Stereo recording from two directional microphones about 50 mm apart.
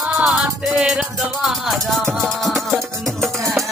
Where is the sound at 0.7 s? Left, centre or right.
Centre.